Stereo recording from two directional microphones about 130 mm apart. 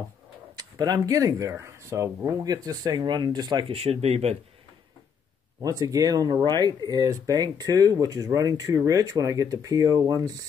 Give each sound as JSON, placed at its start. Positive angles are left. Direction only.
{"t": 0.6, "sound": "speech", "side_deg": -30}
{"t": 5.6, "sound": "speech", "side_deg": -25}